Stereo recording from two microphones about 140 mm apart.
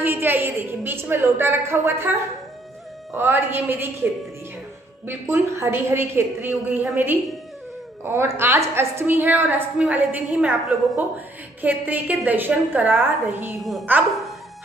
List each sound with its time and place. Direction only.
0.0 s a woman's voice: 15° right (ahead or behind)
3.2 s a woman's voice: 15° right (ahead or behind)